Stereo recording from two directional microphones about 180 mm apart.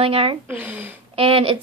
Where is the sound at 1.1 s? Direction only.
30° right (ahead or behind).